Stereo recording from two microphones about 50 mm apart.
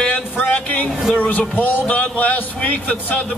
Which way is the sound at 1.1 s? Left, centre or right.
Left.